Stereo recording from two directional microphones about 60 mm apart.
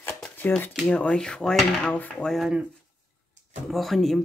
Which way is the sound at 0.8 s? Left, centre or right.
Centre.